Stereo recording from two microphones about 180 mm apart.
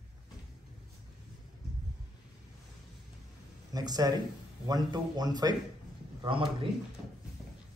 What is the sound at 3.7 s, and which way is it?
A man's voice, 20° right (ahead or behind).